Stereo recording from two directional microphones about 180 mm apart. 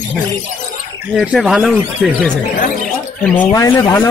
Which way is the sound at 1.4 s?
5° right (ahead or behind).